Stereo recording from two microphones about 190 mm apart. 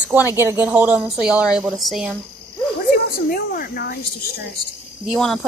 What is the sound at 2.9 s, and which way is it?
Speech, 50° left (ahead or behind).